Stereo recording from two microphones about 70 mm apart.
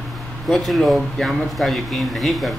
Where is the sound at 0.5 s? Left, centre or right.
Centre.